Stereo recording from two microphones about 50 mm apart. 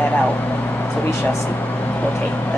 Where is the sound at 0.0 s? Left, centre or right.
Left.